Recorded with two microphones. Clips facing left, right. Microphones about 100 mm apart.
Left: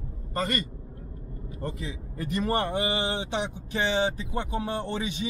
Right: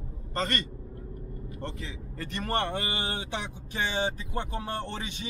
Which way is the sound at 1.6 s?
15° left (ahead or behind).